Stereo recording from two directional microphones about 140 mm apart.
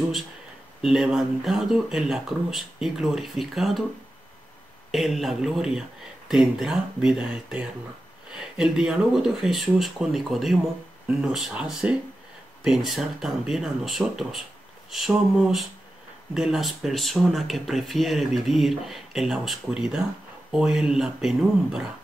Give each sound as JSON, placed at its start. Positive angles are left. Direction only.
{"t": 0.8, "sound": "speech", "side_deg": -5}
{"t": 4.9, "sound": "speech", "side_deg": 0}